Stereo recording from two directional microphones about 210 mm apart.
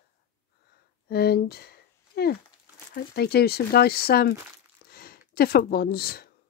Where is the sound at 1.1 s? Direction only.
50° left (ahead or behind).